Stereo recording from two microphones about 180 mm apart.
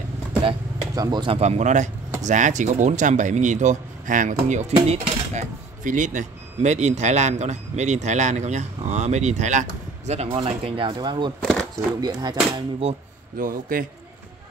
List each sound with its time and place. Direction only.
0.4 s speech: 25° right (ahead or behind)
13.4 s speech: 50° right (ahead or behind)